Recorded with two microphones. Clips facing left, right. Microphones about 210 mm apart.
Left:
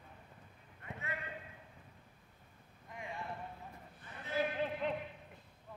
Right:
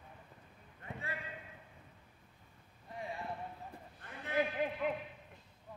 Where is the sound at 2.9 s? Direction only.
35° right (ahead or behind).